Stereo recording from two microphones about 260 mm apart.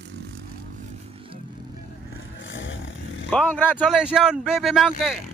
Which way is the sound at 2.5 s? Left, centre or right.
Left.